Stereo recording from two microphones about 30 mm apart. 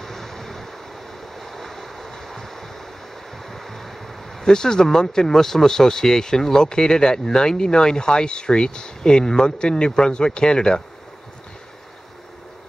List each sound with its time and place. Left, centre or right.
0.0 s vehicle: centre
1.3 s waves: centre
3.4 s a sound: centre
4.4 s speech: left